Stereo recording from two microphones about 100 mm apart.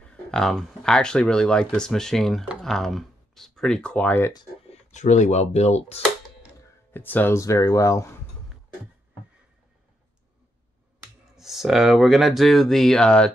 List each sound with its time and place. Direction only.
0.1 s speech: 5° left (ahead or behind)
5.4 s speech: 90° left
6.9 s speech: 20° left (ahead or behind)
7.3 s speech: 35° left (ahead or behind)
11.3 s speech: 5° right (ahead or behind)